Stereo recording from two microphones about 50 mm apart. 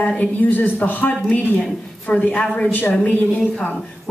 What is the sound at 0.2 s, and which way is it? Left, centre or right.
Speech, left.